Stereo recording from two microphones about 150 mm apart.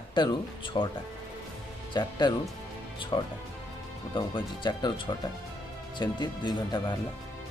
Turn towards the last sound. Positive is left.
turn(degrees=30)  # may be behind; listen again after turning